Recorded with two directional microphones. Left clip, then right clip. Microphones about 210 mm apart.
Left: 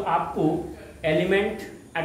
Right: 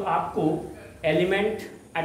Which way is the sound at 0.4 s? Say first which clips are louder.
Left 1 dB; 15° right (ahead or behind).